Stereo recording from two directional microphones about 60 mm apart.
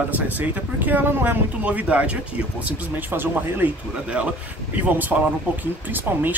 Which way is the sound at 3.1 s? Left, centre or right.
Right.